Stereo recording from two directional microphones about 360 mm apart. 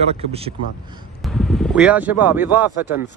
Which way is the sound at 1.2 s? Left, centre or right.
Centre.